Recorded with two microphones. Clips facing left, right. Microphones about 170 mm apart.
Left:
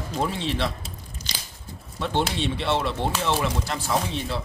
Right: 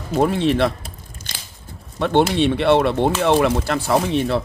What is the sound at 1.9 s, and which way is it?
A man's voice, 60° right (ahead or behind).